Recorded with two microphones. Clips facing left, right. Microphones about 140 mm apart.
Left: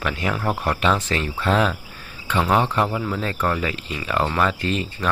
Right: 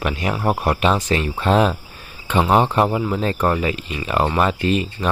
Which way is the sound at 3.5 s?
15° right (ahead or behind).